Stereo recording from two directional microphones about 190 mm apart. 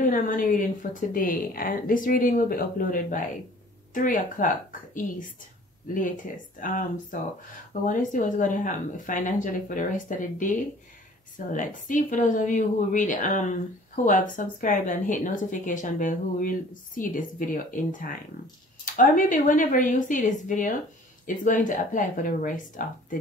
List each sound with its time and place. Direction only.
0.0 s speech: 45° left (ahead or behind)
18.9 s speech: 45° left (ahead or behind)